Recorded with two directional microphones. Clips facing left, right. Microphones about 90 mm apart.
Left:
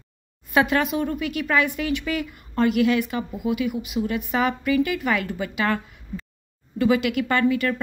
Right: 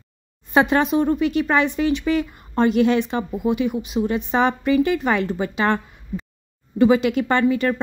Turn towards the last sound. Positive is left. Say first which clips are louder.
# right 3 dB
turn(degrees=-30)  # may be behind; listen again after turning